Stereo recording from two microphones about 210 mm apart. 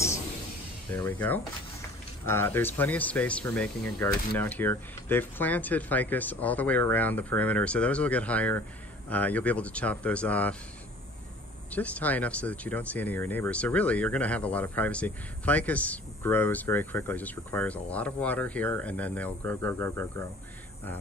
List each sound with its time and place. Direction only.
0.9 s speech: 10° left (ahead or behind)
11.7 s speech: 5° left (ahead or behind)